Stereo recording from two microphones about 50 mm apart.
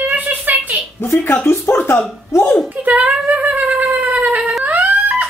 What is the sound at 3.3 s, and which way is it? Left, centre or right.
Shofar, right.